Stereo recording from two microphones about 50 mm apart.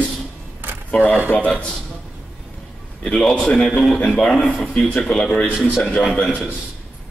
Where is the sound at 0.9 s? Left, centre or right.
Left.